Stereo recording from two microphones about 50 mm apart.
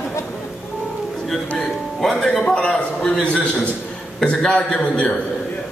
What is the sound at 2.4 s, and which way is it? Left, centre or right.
A man's voice, centre.